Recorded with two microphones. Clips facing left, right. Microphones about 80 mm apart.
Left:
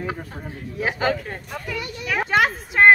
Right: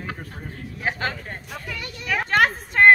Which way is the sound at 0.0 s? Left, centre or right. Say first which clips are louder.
Left 4 dB; centre.